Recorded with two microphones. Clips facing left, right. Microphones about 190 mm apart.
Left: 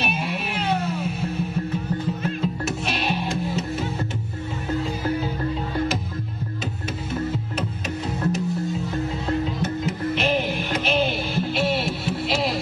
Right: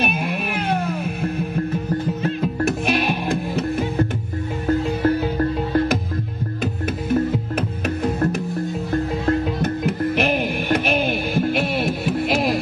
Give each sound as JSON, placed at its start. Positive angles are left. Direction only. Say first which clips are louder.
{"t": 0.0, "sound": "music", "louder": "right 4 dB", "side_deg": -55}
{"t": 2.4, "sound": "music", "louder": "right 8 dB", "side_deg": -60}
{"t": 7.5, "sound": "music", "louder": "right 5 dB", "side_deg": -60}